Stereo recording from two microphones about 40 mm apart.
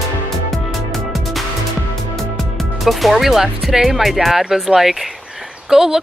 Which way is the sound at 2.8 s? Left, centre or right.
Centre.